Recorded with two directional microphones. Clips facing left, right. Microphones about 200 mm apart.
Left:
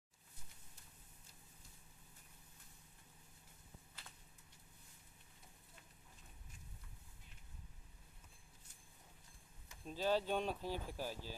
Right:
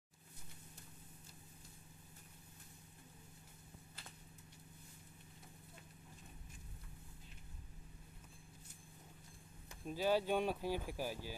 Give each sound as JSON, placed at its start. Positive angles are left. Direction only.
{"t": 9.8, "sound": "speech", "side_deg": -10}